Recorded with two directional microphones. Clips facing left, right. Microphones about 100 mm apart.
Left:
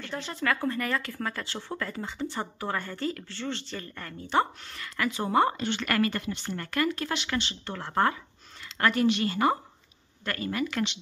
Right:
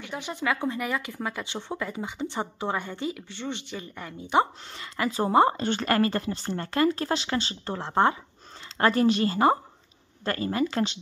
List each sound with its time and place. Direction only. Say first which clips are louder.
0.0 s speech: right 1 dB; 15° right (ahead or behind)
5.6 s speech: right 3 dB; 40° right (ahead or behind)